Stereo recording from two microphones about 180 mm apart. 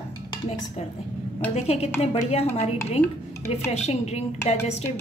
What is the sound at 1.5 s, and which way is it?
A woman's voice, 35° left (ahead or behind).